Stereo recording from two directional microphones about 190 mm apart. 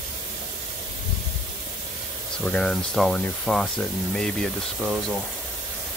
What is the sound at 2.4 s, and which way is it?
Speech, 5° left (ahead or behind).